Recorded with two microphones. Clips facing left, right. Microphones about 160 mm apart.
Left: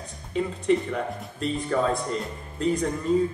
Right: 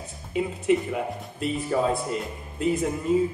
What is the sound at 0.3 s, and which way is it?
Speech, 10° right (ahead or behind).